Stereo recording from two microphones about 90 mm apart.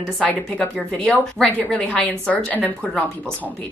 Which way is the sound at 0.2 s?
10° left (ahead or behind).